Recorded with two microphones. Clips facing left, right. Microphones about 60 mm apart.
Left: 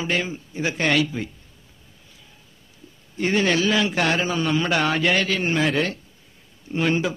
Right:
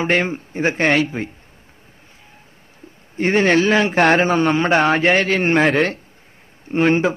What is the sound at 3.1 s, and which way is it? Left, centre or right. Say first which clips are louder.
Speech: right 6 dB; right.